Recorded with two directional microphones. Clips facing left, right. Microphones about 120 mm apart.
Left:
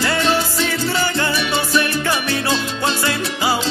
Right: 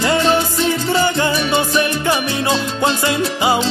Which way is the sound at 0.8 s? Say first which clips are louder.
Right 4 dB; 20° right (ahead or behind).